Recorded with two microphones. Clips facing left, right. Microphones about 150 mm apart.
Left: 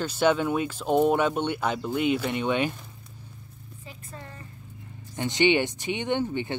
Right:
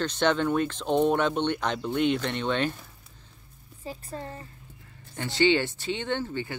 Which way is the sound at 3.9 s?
30° right (ahead or behind).